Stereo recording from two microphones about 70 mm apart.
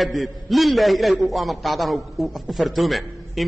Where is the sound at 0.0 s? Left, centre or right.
Centre.